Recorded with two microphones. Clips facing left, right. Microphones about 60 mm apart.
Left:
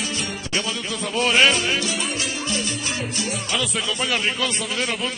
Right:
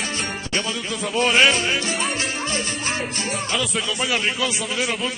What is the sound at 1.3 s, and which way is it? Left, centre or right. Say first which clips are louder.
Music: even; right.